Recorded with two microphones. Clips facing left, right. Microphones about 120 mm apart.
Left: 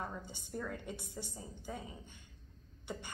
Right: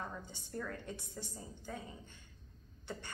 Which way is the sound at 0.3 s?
10° left (ahead or behind).